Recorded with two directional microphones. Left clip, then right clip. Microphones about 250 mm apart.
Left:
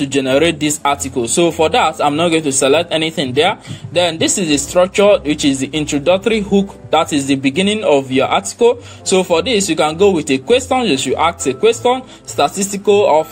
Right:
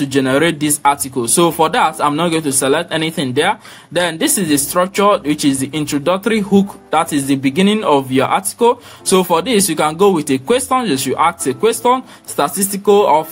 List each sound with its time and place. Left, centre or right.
0.0 s speech: centre